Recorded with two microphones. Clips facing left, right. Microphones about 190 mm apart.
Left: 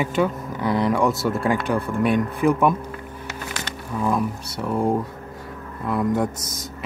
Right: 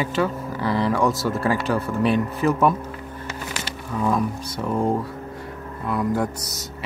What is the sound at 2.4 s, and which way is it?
A man's voice, 10° left (ahead or behind).